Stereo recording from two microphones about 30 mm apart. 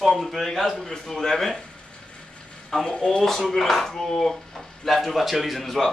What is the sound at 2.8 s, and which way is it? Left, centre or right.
Speech, left.